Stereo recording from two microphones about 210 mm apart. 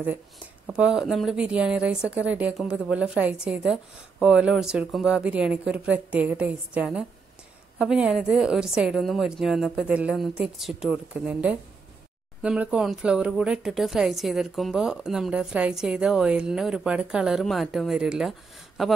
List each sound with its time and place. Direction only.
0.7 s a woman's voice: 5° right (ahead or behind)